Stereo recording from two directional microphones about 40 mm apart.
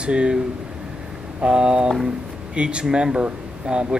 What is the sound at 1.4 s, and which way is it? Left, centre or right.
Speech, right.